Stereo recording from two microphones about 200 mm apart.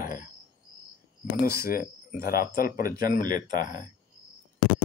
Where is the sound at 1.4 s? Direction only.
50° left (ahead or behind).